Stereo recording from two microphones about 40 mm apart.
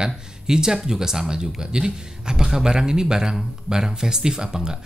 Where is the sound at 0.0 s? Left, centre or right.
Centre.